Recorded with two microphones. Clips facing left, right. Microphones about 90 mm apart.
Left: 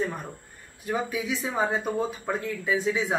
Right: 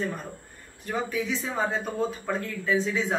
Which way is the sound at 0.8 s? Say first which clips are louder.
Even; 10° left (ahead or behind).